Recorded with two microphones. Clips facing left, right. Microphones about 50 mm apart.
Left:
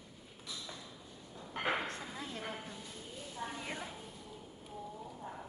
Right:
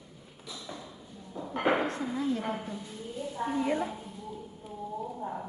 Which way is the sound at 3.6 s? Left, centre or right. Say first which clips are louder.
Right 13 dB; centre.